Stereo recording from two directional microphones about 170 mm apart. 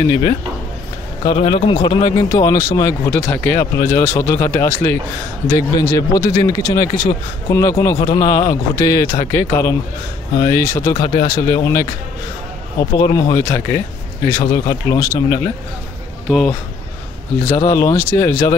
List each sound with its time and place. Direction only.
0.0 s speech: 20° left (ahead or behind)
1.2 s speech: 35° left (ahead or behind)
13.0 s speech: 20° left (ahead or behind)
16.3 s speech: centre (ahead or behind)
17.6 s speech: 20° left (ahead or behind)